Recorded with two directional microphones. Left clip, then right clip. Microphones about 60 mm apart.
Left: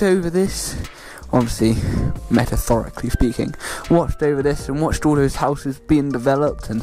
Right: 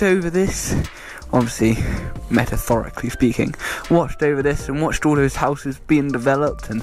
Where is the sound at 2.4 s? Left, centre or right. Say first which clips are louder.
Even; left.